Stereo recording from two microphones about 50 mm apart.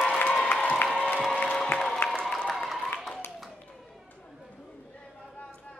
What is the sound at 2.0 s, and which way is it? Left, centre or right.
Applause, left.